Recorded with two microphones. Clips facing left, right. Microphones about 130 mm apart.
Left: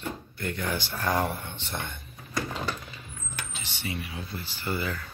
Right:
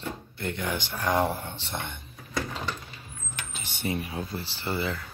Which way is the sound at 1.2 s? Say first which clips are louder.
Right 3 dB; 35° right (ahead or behind).